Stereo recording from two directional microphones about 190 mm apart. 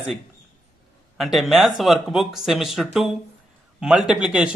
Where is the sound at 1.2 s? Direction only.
Centre (ahead or behind).